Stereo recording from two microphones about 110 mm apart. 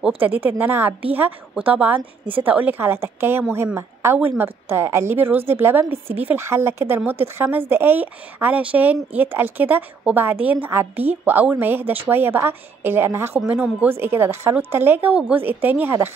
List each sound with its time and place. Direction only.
0.2 s a woman's voice: 15° right (ahead or behind)